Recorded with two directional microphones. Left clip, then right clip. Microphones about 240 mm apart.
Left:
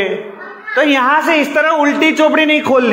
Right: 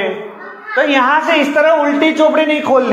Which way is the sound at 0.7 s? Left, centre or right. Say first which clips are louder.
Even; left.